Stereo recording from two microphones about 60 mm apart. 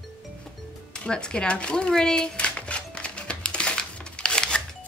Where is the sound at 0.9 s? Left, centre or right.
Centre.